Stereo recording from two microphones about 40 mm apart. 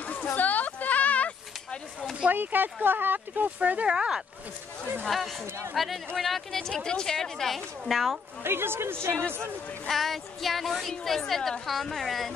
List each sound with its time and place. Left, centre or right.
0.0 s a sound: left
2.3 s speech: right
3.5 s speech: right
3.8 s speech: right
5.0 s a woman's voice: centre
6.8 s a woman's voice: centre
8.5 s a woman's voice: right
9.8 s a woman's voice: centre